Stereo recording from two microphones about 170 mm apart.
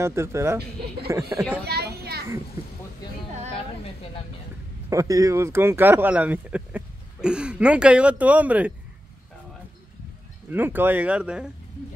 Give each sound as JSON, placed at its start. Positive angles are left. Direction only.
{"t": 0.0, "sound": "speech", "side_deg": -15}
{"t": 1.7, "sound": "a child's voice", "side_deg": -70}
{"t": 3.8, "sound": "a sound", "side_deg": 35}
{"t": 4.8, "sound": "speech", "side_deg": -20}
{"t": 10.5, "sound": "speech", "side_deg": -10}